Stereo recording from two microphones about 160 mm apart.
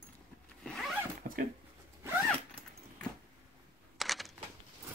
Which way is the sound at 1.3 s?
60° right (ahead or behind).